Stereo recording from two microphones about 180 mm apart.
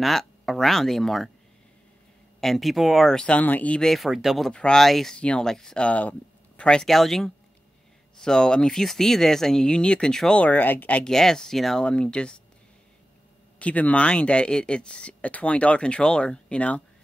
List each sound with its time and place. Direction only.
0.0 s speech: centre (ahead or behind)
2.4 s speech: centre (ahead or behind)
13.6 s speech: 10° left (ahead or behind)